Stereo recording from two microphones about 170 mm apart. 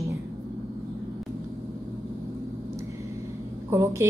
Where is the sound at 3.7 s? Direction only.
15° right (ahead or behind).